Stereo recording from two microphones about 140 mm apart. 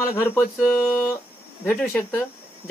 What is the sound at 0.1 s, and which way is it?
Speech, 15° left (ahead or behind).